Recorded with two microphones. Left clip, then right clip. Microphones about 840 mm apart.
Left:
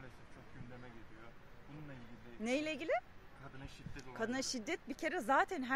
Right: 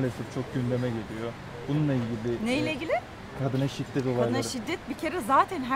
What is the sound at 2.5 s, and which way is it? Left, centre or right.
Speech, left.